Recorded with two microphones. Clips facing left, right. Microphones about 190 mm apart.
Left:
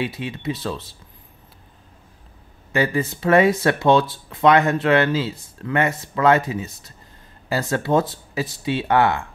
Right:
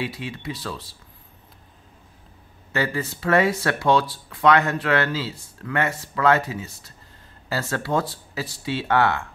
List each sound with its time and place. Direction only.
0.0 s speech: 20° left (ahead or behind)
2.7 s speech: 15° left (ahead or behind)